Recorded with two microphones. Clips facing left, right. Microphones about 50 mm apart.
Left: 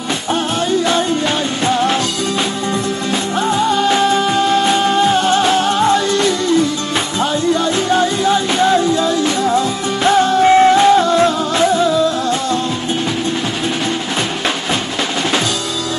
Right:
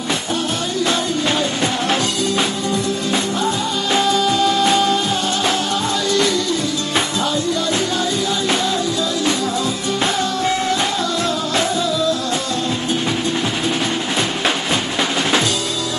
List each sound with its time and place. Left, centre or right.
3.9 s music: left
7.9 s music: left